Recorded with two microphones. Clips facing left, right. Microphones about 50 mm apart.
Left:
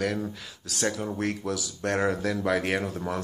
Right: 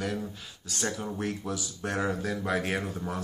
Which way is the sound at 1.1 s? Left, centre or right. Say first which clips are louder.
Left 3 dB; left.